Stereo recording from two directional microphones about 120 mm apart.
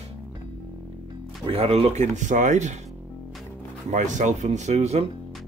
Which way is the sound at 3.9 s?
90° right.